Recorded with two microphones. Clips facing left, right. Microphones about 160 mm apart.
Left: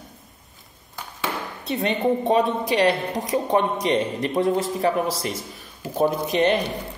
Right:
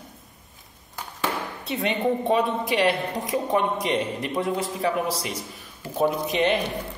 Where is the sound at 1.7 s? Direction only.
40° left (ahead or behind).